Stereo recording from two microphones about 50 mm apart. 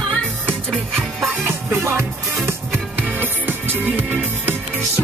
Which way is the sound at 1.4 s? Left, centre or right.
Right.